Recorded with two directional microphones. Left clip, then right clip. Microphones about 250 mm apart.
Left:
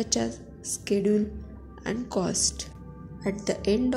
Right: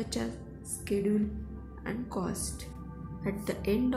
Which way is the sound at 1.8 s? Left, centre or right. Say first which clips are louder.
Left 7 dB; left.